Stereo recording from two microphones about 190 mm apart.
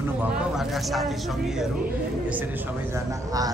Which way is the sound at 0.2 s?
Centre (ahead or behind).